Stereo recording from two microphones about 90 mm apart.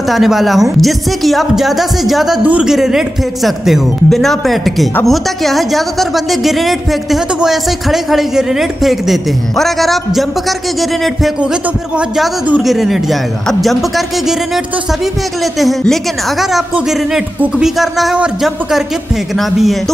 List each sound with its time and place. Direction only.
0.1 s a woman's voice: centre (ahead or behind)
12.5 s a woman's voice: centre (ahead or behind)
15.8 s a woman's voice: centre (ahead or behind)
16.7 s a woman's voice: 10° right (ahead or behind)